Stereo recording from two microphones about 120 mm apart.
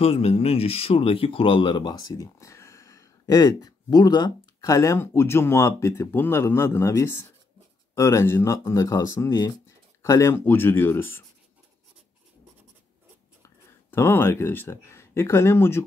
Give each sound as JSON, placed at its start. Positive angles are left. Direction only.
{"t": 0.0, "sound": "speech", "side_deg": 55}
{"t": 13.4, "sound": "speech", "side_deg": 20}